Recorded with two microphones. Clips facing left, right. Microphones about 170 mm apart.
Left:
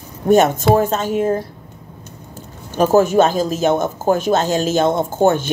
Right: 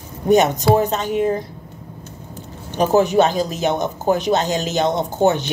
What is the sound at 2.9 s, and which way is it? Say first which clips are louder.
Speech: left 2 dB; 45° left (ahead or behind).